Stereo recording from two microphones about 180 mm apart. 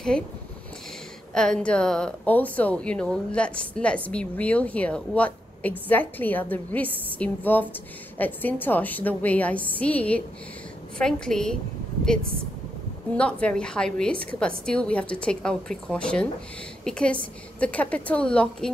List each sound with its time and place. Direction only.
1.3 s a woman's voice: 5° left (ahead or behind)
13.1 s a woman's voice: 5° left (ahead or behind)